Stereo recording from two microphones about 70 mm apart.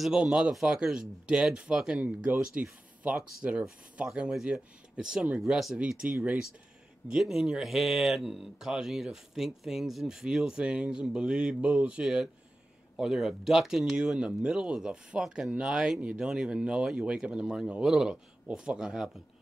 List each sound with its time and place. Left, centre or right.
0.0 s speech: centre